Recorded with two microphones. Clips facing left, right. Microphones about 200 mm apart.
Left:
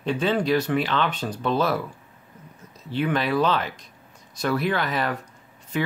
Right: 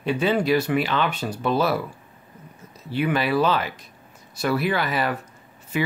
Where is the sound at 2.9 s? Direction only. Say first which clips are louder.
Right 1 dB; 10° right (ahead or behind).